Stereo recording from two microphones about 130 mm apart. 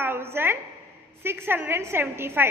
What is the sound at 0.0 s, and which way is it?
A woman's voice, 20° right (ahead or behind).